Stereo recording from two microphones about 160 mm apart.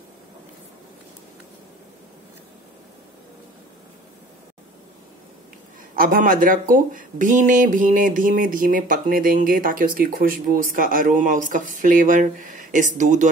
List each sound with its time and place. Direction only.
5.9 s speech: 60° right (ahead or behind)